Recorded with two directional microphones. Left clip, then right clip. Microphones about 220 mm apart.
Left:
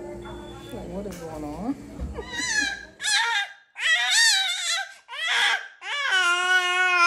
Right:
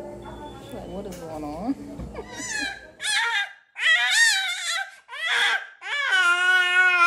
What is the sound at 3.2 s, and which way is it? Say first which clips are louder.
Whimper: even; 20° left (ahead or behind).